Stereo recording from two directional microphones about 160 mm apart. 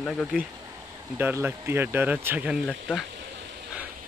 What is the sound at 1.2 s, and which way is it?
Speech, 10° right (ahead or behind).